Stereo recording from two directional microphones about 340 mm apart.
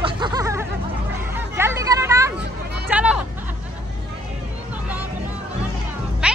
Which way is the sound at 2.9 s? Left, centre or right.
Centre.